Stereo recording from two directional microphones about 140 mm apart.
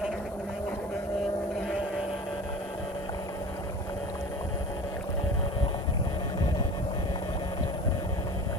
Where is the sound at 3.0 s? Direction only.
25° left (ahead or behind).